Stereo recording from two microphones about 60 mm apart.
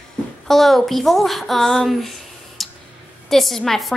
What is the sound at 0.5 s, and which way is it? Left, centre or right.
A woman's voice, centre.